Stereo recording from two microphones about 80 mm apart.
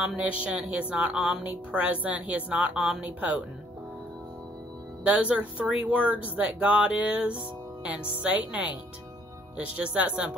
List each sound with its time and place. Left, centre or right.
0.2 s a woman's voice: centre
5.0 s a woman's voice: centre
9.8 s a woman's voice: centre